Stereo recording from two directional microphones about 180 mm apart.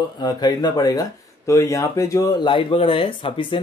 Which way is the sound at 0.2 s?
25° left (ahead or behind).